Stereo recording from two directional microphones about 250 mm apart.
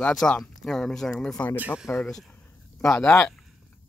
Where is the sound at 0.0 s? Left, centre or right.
Centre.